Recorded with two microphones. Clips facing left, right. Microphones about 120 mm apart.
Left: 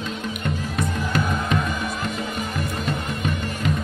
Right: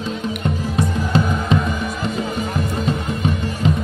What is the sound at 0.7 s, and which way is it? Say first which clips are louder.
Music: right 6 dB; 25° right (ahead or behind).